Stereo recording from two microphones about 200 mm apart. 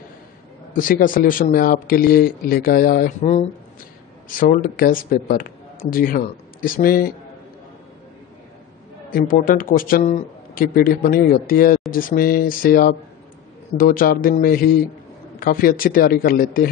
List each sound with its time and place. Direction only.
0.7 s speech: 45° left (ahead or behind)
9.1 s speech: 45° left (ahead or behind)